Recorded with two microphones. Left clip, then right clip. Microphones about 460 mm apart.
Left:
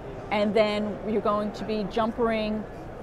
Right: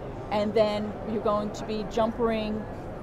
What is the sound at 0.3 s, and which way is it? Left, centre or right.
A woman's voice, left.